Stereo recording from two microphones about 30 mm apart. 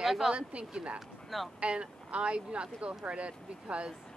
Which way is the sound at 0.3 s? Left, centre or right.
Right.